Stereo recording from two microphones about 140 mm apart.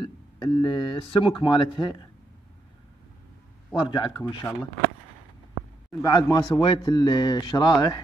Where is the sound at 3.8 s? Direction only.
35° left (ahead or behind).